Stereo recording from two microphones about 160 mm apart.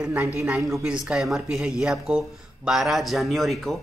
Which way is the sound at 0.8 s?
5° right (ahead or behind).